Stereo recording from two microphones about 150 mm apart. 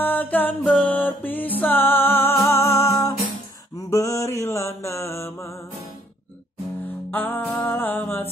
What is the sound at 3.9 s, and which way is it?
Mantra, 20° left (ahead or behind).